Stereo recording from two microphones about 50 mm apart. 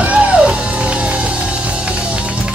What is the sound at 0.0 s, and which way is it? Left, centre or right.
Music, right.